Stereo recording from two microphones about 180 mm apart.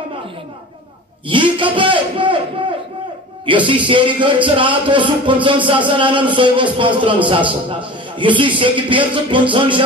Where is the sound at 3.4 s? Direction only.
30° right (ahead or behind).